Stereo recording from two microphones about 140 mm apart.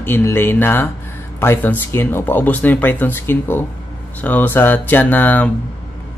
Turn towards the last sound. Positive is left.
turn(degrees=10)  # may be behind; listen again after turning